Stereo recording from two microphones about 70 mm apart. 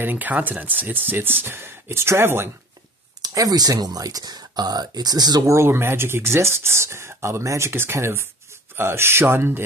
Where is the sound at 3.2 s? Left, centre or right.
Right.